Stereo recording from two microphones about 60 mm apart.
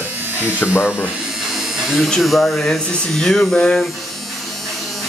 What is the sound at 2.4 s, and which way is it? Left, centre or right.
Speech, centre.